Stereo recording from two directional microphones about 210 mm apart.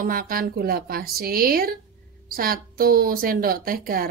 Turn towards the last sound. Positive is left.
turn(degrees=-45)  # may be behind; listen again after turning